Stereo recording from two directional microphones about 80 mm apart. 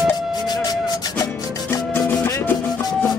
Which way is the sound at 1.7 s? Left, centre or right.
Left.